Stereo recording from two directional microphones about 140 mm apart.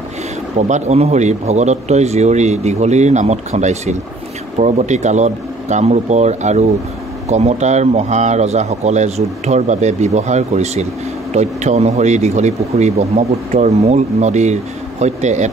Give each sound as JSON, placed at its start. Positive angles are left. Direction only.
{"t": 0.6, "sound": "speech", "side_deg": -55}